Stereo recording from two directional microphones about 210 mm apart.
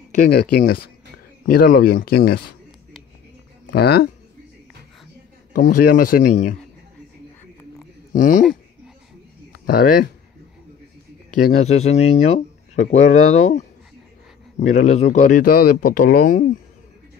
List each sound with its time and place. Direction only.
0.3 s speech: 50° left (ahead or behind)
3.6 s speech: 50° left (ahead or behind)
5.5 s speech: 40° left (ahead or behind)
8.1 s speech: 40° left (ahead or behind)
9.5 s a sound: 45° left (ahead or behind)
11.6 s speech: 30° left (ahead or behind)
14.6 s speech: 35° left (ahead or behind)